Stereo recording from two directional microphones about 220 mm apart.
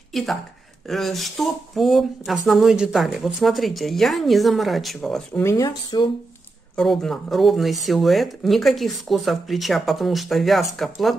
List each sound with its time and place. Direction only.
0.1 s speech: centre (ahead or behind); by 6.0 s 20° left (ahead or behind)
6.8 s speech: centre (ahead or behind)